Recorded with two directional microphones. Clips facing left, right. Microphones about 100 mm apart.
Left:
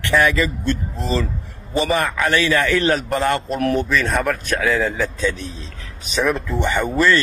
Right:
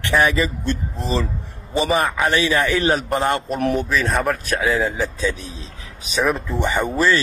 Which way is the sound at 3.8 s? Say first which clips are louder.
Left 1 dB; 5° right (ahead or behind).